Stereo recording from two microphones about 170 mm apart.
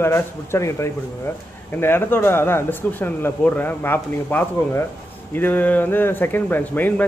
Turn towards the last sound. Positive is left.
turn(degrees=10)  # may be behind; listen again after turning